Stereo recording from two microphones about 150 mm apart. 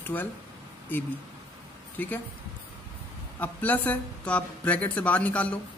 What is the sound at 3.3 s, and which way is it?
Speech, 10° left (ahead or behind).